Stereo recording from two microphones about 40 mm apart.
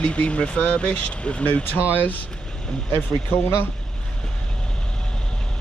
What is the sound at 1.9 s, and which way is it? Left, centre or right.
Speech, left.